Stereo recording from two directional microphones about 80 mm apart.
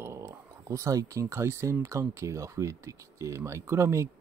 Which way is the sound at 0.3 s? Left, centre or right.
Right.